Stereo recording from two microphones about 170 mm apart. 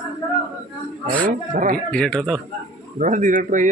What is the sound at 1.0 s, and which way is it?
Speech, 55° right (ahead or behind).